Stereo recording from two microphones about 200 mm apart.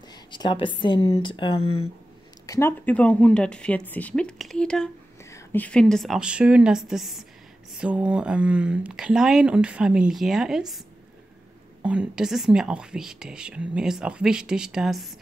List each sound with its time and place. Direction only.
0.3 s speech: 25° left (ahead or behind)
2.4 s speech: 15° left (ahead or behind); by 10.8 s centre (ahead or behind)
11.8 s speech: 5° right (ahead or behind)